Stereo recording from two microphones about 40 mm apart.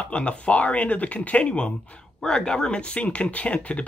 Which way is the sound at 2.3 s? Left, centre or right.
Centre.